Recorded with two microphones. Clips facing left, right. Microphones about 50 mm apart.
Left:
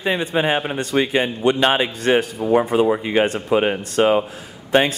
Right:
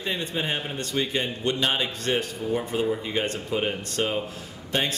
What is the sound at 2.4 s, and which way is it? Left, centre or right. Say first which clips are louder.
Speech: left 9 dB; left.